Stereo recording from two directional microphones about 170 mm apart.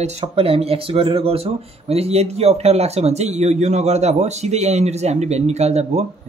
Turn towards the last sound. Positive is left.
turn(degrees=-40)  # may be behind; listen again after turning